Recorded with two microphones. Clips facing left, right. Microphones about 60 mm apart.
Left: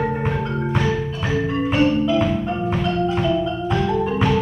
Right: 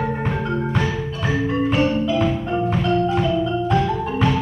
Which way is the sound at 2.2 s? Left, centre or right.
Centre.